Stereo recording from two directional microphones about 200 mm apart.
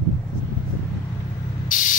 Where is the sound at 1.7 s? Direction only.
40° left (ahead or behind).